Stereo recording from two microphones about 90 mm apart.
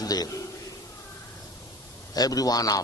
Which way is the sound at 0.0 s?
45° left (ahead or behind).